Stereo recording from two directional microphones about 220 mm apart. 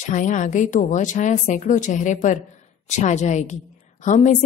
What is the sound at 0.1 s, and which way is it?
A woman's voice, 35° left (ahead or behind).